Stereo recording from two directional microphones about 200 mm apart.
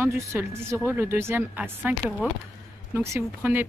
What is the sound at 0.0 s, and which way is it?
Speech, 15° right (ahead or behind).